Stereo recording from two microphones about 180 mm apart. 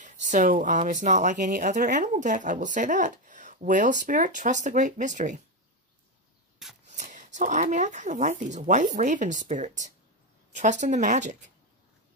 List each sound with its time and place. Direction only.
0.0 s speech: 45° right (ahead or behind)
6.9 s speech: 40° right (ahead or behind)